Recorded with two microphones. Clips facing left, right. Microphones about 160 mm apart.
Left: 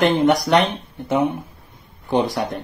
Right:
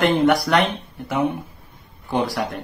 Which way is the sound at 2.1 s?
20° left (ahead or behind).